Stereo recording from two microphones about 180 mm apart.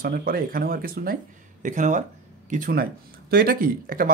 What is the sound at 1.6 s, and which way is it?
Speech, 45° right (ahead or behind).